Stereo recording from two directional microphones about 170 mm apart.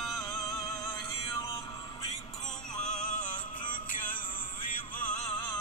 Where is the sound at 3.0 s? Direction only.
45° left (ahead or behind).